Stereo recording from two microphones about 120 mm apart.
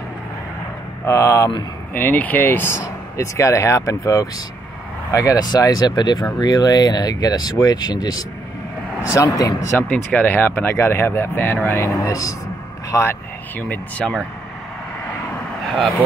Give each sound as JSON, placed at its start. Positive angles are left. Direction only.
{"t": 1.0, "sound": "speech", "side_deg": 25}
{"t": 2.0, "sound": "speech", "side_deg": 15}
{"t": 9.8, "sound": "speech", "side_deg": 15}